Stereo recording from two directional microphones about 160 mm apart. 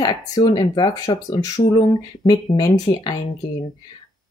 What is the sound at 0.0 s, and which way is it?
Speech, 25° left (ahead or behind).